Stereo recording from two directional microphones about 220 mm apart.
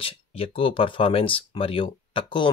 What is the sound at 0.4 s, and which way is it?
Speech, 25° left (ahead or behind).